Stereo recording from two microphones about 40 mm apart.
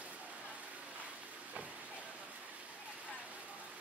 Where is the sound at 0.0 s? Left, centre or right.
Right.